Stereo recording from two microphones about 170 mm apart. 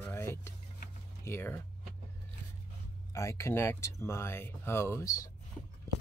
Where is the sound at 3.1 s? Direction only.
15° left (ahead or behind).